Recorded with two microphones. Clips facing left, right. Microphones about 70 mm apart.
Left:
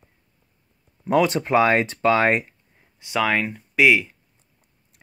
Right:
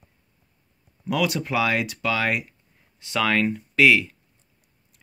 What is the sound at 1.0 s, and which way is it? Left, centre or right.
Speech, left.